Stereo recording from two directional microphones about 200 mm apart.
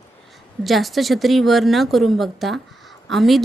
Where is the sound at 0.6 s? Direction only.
Centre (ahead or behind).